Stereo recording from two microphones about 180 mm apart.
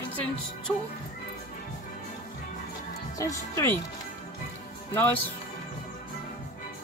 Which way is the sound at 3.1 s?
20° left (ahead or behind).